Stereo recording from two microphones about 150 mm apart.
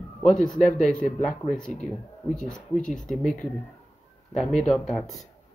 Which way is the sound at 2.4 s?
5° left (ahead or behind).